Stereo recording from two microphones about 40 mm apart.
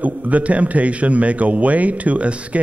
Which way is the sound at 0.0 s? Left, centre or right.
Right.